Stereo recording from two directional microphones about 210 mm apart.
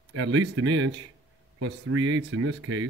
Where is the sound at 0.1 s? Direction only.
80° right.